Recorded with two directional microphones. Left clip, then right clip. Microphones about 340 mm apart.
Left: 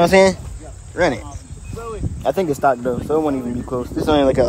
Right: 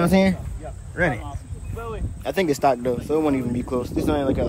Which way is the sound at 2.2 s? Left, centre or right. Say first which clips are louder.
Left 3 dB; centre.